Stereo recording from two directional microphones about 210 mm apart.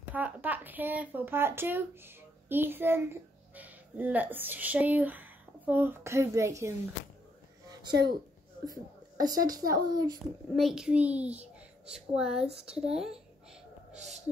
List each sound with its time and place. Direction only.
0.1 s speech: 10° right (ahead or behind)
8.6 s a woman's voice: 15° right (ahead or behind)
10.5 s a child's voice: centre (ahead or behind)
13.9 s a sound: 35° right (ahead or behind)